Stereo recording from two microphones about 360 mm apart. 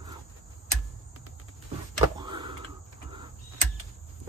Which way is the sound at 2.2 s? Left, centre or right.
Centre.